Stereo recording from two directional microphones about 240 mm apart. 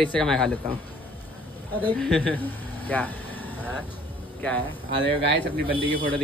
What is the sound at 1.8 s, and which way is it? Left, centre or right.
Speech, centre.